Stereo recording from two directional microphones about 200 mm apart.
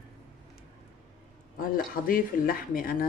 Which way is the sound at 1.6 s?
45° left (ahead or behind).